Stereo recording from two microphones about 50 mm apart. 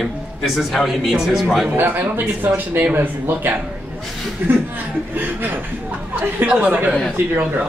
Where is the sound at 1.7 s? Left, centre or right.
Right.